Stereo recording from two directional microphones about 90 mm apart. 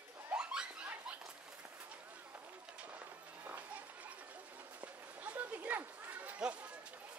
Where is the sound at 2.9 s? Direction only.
20° right (ahead or behind).